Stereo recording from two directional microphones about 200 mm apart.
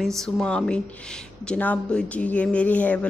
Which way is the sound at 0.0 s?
Centre (ahead or behind).